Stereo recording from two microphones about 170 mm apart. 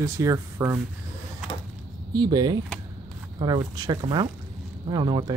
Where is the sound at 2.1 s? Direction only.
25° right (ahead or behind).